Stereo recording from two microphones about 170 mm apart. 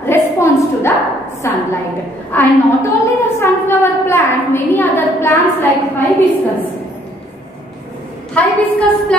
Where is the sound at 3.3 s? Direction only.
15° left (ahead or behind).